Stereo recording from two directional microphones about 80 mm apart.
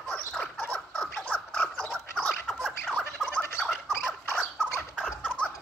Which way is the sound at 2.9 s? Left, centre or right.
Left.